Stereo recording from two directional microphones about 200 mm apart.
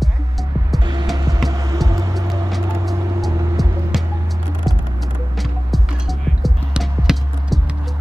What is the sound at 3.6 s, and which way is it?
Music, centre (ahead or behind).